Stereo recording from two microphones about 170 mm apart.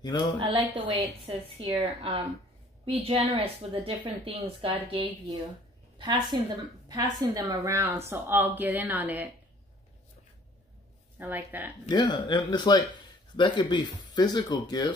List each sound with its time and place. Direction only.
0.0 s speech: 25° left (ahead or behind)
0.7 s a woman's voice: 30° right (ahead or behind); by 9.3 s 10° right (ahead or behind)
11.1 s a woman's voice: 10° right (ahead or behind)
11.9 s speech: 25° left (ahead or behind)